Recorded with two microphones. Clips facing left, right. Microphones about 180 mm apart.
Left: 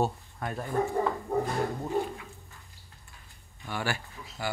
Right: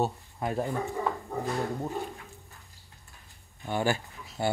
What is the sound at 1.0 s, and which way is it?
Dog, 50° left (ahead or behind).